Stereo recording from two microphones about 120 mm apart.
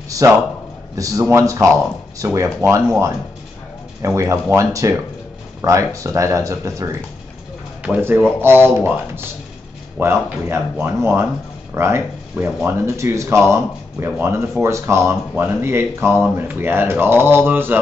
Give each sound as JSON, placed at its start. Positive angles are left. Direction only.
{"t": 0.9, "sound": "speech", "side_deg": -30}
{"t": 7.8, "sound": "speech", "side_deg": -15}